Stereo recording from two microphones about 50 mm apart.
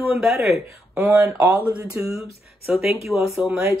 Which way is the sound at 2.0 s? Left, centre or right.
Right.